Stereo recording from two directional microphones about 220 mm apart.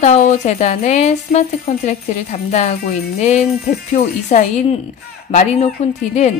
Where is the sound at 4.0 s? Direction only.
40° left (ahead or behind).